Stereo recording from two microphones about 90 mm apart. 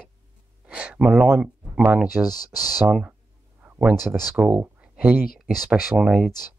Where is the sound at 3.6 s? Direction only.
20° right (ahead or behind).